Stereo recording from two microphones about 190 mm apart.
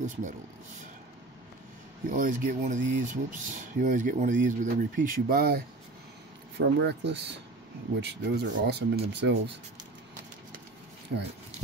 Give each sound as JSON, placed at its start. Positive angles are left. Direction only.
{"t": 0.0, "sound": "speech", "side_deg": -40}
{"t": 2.0, "sound": "speech", "side_deg": -45}
{"t": 6.6, "sound": "speech", "side_deg": -60}